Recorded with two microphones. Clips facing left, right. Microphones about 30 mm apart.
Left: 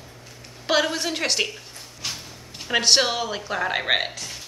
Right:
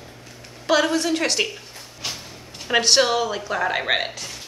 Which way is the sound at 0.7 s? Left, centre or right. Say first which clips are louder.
Right 3 dB; centre.